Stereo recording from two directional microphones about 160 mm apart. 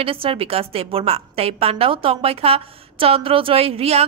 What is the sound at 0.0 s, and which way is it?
A woman's voice, 35° right (ahead or behind).